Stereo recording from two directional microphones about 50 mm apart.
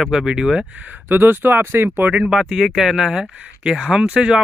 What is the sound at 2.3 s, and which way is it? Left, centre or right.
A man's voice, centre.